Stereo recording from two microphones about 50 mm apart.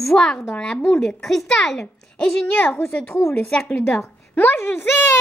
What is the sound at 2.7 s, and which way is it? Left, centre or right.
Speech, left.